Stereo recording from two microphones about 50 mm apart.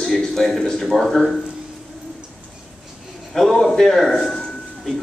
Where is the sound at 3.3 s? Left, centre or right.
Centre.